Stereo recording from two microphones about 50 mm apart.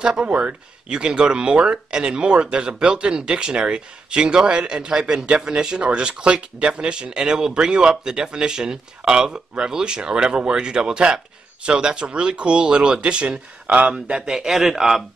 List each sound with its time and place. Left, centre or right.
0.0 s speech: centre